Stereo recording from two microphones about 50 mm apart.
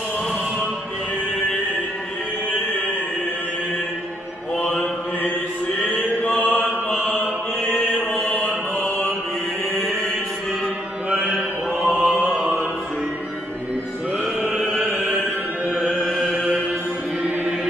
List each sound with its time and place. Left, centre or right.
5.8 s mantra: left
6.9 s mantra: left
11.1 s mantra: centre
12.4 s music: centre
14.5 s music: centre
15.0 s music: right
15.7 s music: right
16.1 s a sound: centre